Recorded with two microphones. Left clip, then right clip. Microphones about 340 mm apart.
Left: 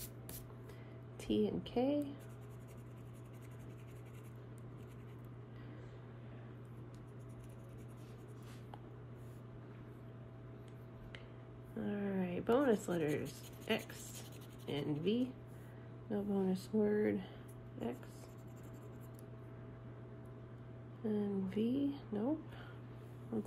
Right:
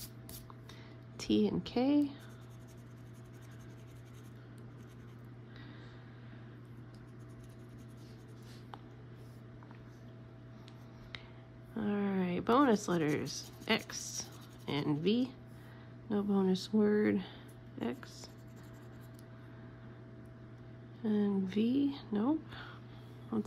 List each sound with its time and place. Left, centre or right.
1.2 s speech: centre
11.8 s speech: centre
16.2 s speech: right
16.5 s speech: right
21.0 s speech: right